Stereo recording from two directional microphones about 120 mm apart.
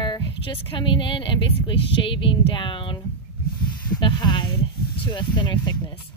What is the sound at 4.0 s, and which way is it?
A woman's voice, 40° left (ahead or behind).